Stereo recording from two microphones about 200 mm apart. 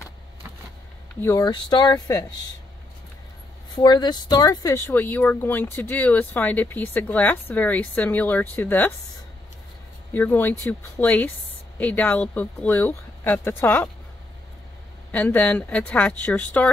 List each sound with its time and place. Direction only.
1.2 s speech: 20° left (ahead or behind)
3.7 s speech: 20° left (ahead or behind)
10.1 s speech: 10° left (ahead or behind)
15.0 s speech: 5° left (ahead or behind)